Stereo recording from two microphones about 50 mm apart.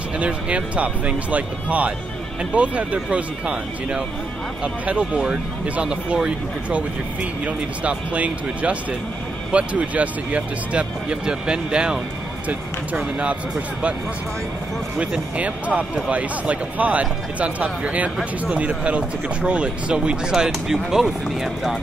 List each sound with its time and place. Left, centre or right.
0.2 s speech: right
11.2 s speech: centre
15.0 s speech: right; by 21.7 s centre